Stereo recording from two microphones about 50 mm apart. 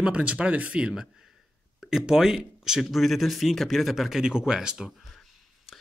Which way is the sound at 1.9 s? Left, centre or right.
Centre.